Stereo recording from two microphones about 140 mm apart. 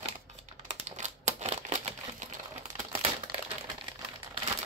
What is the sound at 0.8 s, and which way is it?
Crumpling, 60° right (ahead or behind).